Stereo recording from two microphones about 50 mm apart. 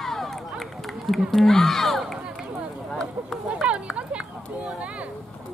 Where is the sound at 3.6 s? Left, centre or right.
Right.